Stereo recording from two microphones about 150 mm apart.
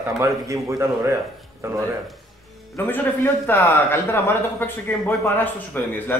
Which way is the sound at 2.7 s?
15° left (ahead or behind).